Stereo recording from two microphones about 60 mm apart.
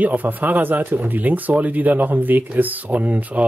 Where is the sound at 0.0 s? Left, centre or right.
Right.